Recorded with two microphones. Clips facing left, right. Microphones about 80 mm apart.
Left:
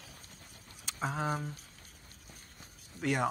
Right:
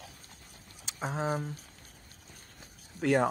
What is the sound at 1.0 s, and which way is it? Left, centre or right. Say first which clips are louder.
Speech: right 1 dB; right.